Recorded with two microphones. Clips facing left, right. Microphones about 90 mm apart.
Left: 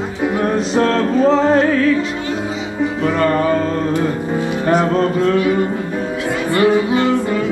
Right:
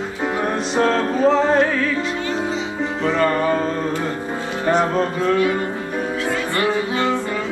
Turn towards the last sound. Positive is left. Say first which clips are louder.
# left 6 dB
turn(degrees=20)  # may be behind; listen again after turning